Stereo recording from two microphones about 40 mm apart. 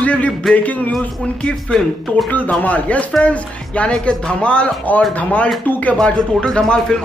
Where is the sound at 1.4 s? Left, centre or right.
Left.